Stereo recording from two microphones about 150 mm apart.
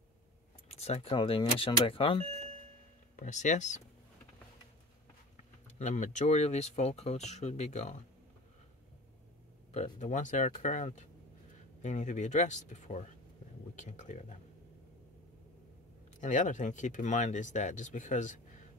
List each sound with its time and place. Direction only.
0.7 s speech: 45° left (ahead or behind)
3.2 s speech: 55° left (ahead or behind)
5.8 s speech: 50° left (ahead or behind)
9.9 s speech: 55° left (ahead or behind)
16.2 s speech: 55° left (ahead or behind)